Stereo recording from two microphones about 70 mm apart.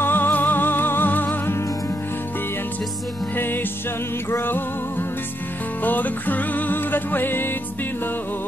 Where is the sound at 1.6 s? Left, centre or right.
Left.